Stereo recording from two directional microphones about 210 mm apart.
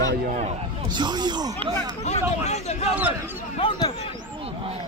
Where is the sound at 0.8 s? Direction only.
20° right (ahead or behind).